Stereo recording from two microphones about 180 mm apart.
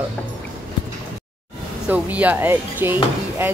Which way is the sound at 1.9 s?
10° right (ahead or behind).